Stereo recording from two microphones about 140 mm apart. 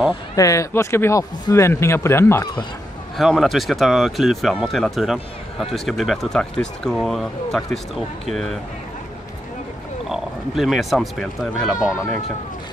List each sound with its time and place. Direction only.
0.4 s speech: 20° left (ahead or behind)
3.2 s speech: centre (ahead or behind)
10.0 s speech: 5° right (ahead or behind)